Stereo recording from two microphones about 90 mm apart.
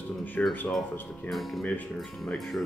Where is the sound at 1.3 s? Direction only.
Centre (ahead or behind).